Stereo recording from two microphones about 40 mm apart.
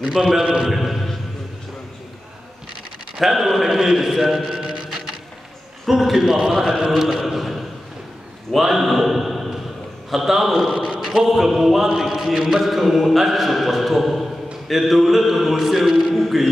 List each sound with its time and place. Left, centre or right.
0.0 s a man's voice: centre
0.6 s chant: centre
3.2 s chant: centre
4.5 s music: centre
5.9 s a man's voice: centre
6.6 s chant: centre
8.5 s a man's voice: centre
10.1 s chant: centre